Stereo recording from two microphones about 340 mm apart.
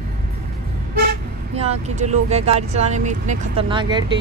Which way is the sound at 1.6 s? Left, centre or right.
Centre.